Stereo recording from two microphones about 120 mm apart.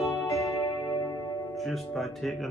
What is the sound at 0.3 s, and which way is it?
Music, 30° left (ahead or behind).